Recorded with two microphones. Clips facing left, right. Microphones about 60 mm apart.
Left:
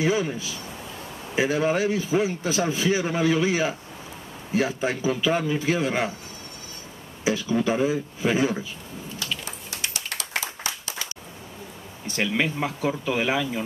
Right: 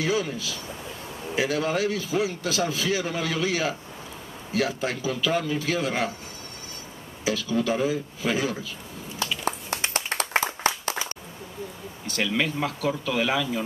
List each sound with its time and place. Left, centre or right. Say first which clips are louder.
0.0 s speech: left 2 dB; centre
7.2 s speech: left 2 dB; left
10.4 s clapping: right 7 dB; right
12.1 s speech: left 1 dB; centre